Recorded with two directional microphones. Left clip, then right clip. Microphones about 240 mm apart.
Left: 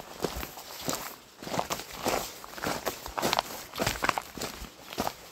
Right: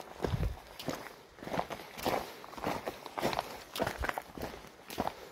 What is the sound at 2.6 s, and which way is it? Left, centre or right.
Walk, left.